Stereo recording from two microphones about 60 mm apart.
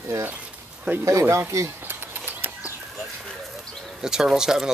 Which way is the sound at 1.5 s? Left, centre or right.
Right.